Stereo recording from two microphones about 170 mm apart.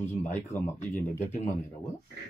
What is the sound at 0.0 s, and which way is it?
Speech, 10° left (ahead or behind).